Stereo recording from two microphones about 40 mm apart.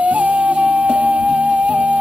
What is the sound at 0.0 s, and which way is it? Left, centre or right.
Music, right.